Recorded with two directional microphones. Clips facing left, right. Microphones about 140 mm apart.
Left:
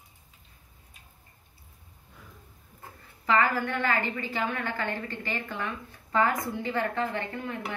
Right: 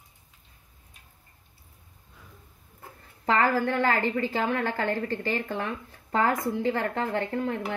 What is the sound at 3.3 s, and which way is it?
Speech, 45° right (ahead or behind).